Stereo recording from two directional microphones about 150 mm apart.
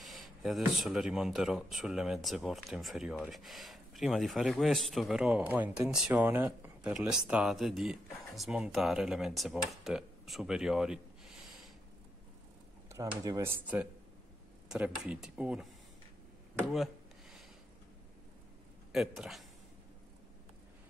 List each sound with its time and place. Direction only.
0.0 s speech: centre (ahead or behind)
13.2 s speech: 20° right (ahead or behind)
16.6 s a sound: centre (ahead or behind)
18.9 s speech: centre (ahead or behind)